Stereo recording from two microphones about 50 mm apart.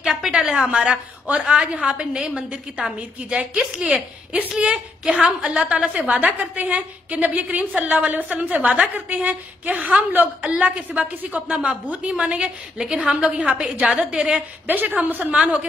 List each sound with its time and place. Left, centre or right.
0.0 s a sound: centre
0.3 s a woman's voice: centre
3.9 s a woman's voice: right
5.9 s a woman's voice: right
8.9 s a woman's voice: right; by 14.4 s centre
14.7 s a woman's voice: right
15.3 s a woman's voice: right